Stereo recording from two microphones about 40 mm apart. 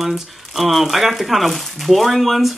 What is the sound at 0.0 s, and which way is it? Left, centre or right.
Speech, centre.